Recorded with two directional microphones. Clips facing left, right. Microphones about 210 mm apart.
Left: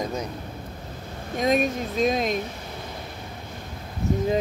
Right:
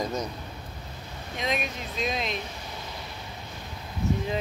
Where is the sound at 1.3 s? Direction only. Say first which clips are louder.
Left 9 dB; 45° left (ahead or behind).